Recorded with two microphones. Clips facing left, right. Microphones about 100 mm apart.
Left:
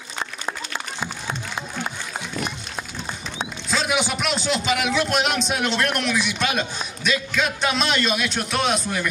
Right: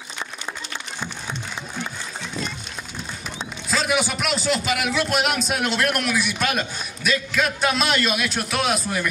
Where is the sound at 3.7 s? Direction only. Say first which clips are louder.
Right 1 dB; centre (ahead or behind).